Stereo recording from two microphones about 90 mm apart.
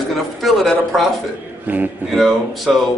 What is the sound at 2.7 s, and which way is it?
Speech, 5° right (ahead or behind).